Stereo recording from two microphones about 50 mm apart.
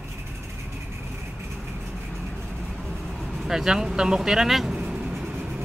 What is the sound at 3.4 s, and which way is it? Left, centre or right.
Speech, centre.